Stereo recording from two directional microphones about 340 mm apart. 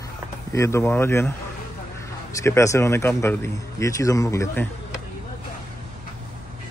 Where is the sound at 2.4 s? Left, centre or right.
Centre.